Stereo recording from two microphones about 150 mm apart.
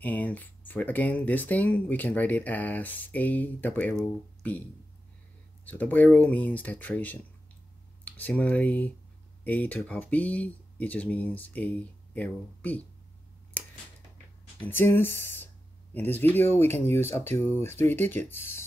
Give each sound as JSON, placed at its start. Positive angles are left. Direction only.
{"t": 0.0, "sound": "speech", "side_deg": 10}
{"t": 5.7, "sound": "speech", "side_deg": 10}
{"t": 14.7, "sound": "speech", "side_deg": 15}